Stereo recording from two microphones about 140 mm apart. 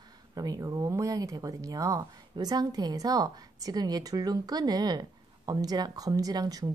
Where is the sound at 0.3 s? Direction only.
25° right (ahead or behind).